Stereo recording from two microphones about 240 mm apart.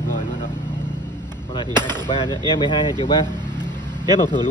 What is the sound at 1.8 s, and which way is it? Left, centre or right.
Speech, centre.